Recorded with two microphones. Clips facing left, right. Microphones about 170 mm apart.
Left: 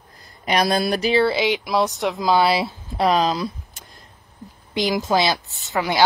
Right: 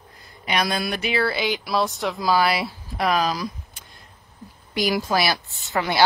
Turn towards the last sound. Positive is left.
turn(degrees=15)  # may be behind; listen again after turning